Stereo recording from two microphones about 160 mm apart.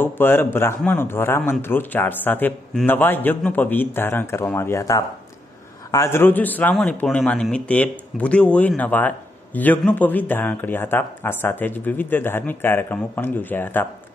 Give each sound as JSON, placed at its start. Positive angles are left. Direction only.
{"t": 0.0, "sound": "speech", "side_deg": 15}